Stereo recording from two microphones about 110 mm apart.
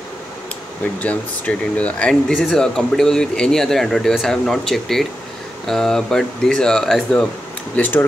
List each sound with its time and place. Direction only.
0.9 s speech: 10° left (ahead or behind)